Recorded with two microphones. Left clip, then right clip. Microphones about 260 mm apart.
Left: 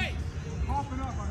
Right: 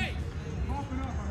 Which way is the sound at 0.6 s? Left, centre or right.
Left.